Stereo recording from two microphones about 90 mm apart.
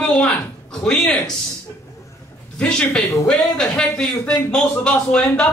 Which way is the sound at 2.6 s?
15° left (ahead or behind).